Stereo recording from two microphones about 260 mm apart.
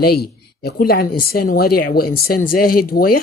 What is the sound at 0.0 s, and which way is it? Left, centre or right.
A man's voice, left.